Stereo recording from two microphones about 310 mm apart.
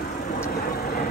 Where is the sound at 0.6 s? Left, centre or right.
Left.